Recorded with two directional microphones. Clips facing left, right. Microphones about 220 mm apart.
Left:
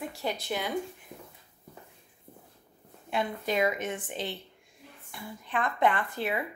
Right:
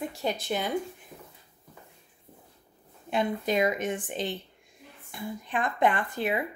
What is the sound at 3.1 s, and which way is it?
A woman's voice, 20° right (ahead or behind).